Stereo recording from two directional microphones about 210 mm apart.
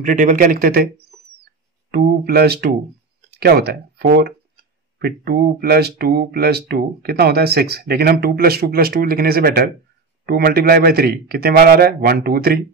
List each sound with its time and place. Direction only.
0.0 s speech: 40° right (ahead or behind)
1.4 s mouse: 45° right (ahead or behind)
3.3 s speech: 50° right (ahead or behind)